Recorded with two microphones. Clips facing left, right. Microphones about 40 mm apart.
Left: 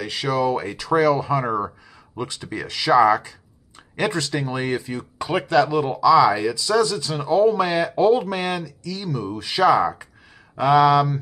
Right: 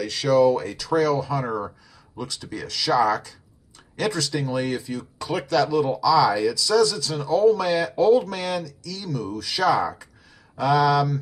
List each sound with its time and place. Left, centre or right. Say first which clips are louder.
0.0 s a man's voice: right 4 dB; centre